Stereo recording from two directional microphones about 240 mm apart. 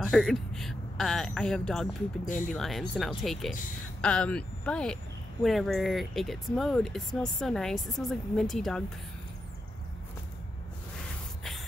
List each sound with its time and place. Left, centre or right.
0.0 s speech: centre
2.2 s speech: left
2.5 s speech: centre